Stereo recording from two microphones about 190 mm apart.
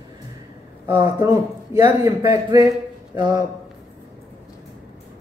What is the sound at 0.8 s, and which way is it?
A man's voice, 15° right (ahead or behind).